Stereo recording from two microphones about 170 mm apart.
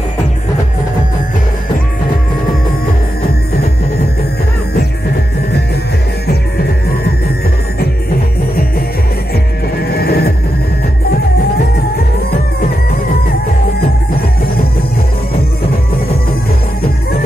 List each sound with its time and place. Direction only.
9.3 s music: 65° left (ahead or behind)